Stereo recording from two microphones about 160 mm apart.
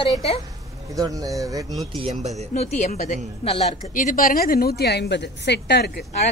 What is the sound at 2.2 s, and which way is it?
Speech, 45° right (ahead or behind).